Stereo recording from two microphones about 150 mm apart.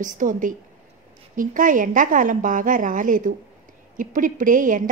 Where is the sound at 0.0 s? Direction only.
60° right (ahead or behind).